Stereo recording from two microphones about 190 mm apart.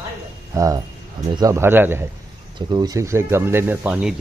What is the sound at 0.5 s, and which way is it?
Speech, 15° right (ahead or behind).